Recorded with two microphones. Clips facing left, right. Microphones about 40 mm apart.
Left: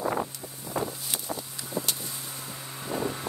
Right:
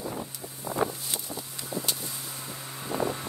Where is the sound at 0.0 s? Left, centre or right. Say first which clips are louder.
Left 7 dB; left.